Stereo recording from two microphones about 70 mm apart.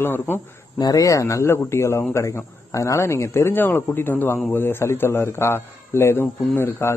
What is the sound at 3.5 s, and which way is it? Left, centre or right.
A man's voice, left.